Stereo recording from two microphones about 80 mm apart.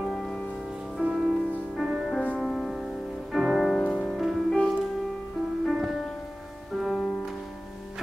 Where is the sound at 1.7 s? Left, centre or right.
Centre.